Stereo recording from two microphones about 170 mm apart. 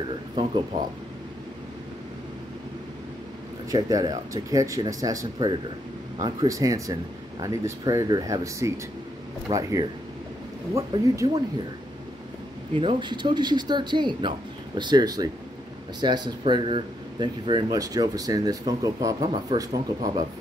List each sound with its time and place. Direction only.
0.4 s speech: 25° right (ahead or behind)
3.7 s speech: 20° right (ahead or behind)
12.7 s speech: 30° right (ahead or behind)